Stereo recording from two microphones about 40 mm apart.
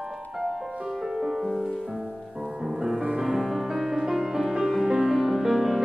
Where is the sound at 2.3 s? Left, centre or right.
Centre.